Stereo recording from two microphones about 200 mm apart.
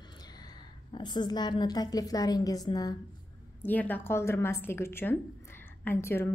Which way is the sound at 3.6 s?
10° left (ahead or behind).